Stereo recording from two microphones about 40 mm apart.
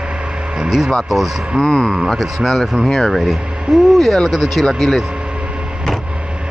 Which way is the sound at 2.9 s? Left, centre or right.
Centre.